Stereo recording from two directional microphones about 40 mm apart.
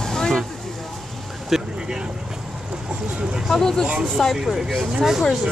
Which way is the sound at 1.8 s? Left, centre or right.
Centre.